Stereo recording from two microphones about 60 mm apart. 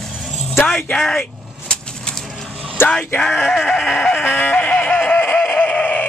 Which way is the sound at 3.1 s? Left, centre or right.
Centre.